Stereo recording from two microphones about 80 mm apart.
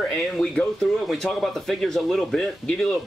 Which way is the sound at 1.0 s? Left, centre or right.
Centre.